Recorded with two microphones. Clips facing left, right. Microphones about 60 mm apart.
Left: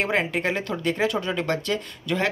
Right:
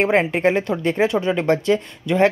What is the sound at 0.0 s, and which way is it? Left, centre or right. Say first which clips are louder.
Speech: right 7 dB; right.